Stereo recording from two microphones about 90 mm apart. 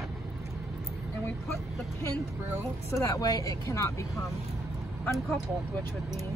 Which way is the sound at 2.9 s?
35° left (ahead or behind).